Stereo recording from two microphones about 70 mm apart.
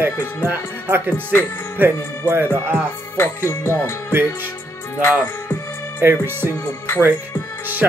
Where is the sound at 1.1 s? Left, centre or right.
Left.